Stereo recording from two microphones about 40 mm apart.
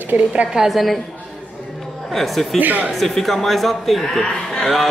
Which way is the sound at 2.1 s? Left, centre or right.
Centre.